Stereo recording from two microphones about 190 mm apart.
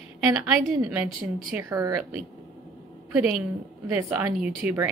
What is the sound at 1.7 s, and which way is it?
Speech, 20° right (ahead or behind).